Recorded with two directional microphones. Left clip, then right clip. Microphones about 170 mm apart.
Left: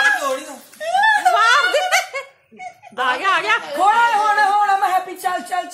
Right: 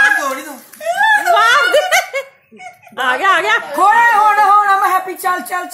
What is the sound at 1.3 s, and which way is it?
Snicker, 45° right (ahead or behind).